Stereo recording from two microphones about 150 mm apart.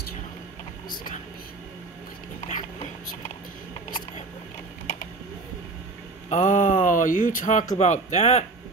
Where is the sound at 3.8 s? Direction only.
65° left (ahead or behind).